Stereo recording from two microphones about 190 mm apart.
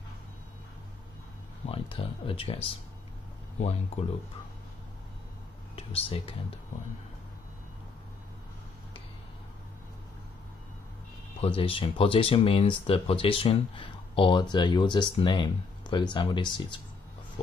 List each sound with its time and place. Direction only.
1.7 s speech: 30° left (ahead or behind)
5.8 s speech: 30° left (ahead or behind)
11.4 s speech: 30° left (ahead or behind)